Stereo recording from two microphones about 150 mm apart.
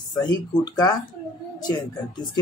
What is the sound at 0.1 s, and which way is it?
Speech, 25° left (ahead or behind).